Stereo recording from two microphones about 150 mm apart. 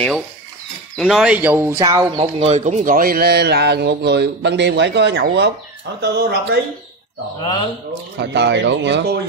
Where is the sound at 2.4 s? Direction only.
45° right (ahead or behind); by 3.9 s 90° right.